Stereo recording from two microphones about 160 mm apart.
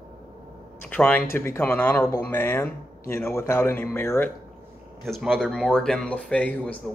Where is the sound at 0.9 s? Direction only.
10° left (ahead or behind).